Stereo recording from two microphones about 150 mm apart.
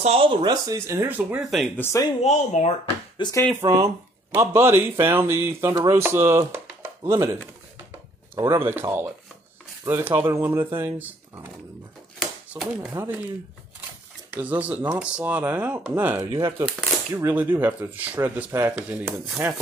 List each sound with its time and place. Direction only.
0.0 s speech: 40° right (ahead or behind); by 1.7 s centre (ahead or behind)
1.8 s speech: 15° left (ahead or behind)
2.2 s speech: 50° left (ahead or behind)
3.2 s speech: 25° left (ahead or behind)
3.6 s speech: 25° right (ahead or behind)
7.9 s a sound: 20° right (ahead or behind)
8.6 s speech: 15° right (ahead or behind)
12.2 s a sound: centre (ahead or behind)
12.9 s speech: 15° right (ahead or behind)
14.3 s speech: 10° right (ahead or behind)